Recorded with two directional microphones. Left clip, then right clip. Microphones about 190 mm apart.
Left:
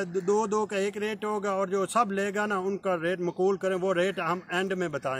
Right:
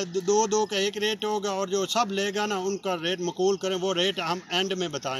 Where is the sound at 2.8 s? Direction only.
5° left (ahead or behind).